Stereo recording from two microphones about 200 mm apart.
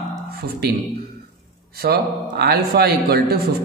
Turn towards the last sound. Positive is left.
turn(degrees=-50)  # may be behind; listen again after turning